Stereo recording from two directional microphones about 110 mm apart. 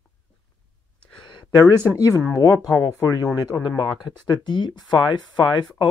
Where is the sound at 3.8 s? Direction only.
45° left (ahead or behind).